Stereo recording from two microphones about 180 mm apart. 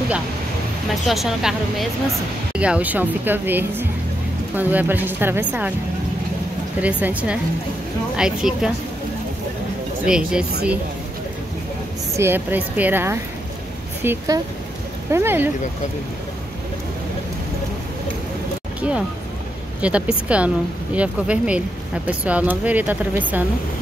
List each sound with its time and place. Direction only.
1.0 s a woman's voice: centre (ahead or behind)
6.8 s a woman's voice: 10° right (ahead or behind)
10.0 s a woman's voice: 5° right (ahead or behind)
12.2 s speech: 10° right (ahead or behind)
18.8 s speech: 5° right (ahead or behind)